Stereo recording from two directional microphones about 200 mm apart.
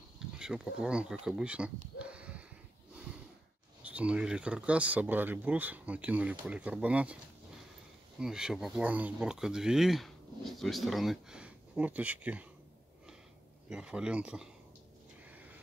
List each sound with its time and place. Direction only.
0.4 s speech: 5° right (ahead or behind)
2.0 s a sound: 5° right (ahead or behind)
3.8 s speech: 5° right (ahead or behind)
8.2 s speech: 5° right (ahead or behind)
13.7 s speech: 5° right (ahead or behind)